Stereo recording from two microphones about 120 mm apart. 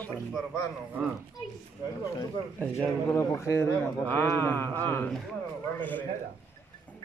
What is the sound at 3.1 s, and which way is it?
A man's voice, 25° left (ahead or behind).